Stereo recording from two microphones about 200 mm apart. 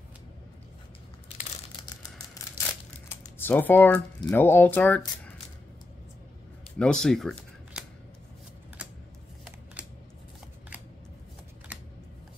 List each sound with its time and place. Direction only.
1.8 s a sound: 20° left (ahead or behind)
3.1 s computer keyboard: 10° left (ahead or behind)
4.2 s speech: 10° left (ahead or behind)
6.8 s speech: 5° left (ahead or behind)